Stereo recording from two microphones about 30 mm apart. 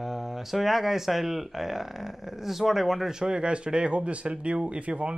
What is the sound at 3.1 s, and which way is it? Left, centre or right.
Speech, right.